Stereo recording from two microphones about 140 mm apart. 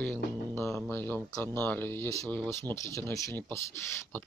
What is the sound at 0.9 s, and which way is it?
Speech, 15° left (ahead or behind).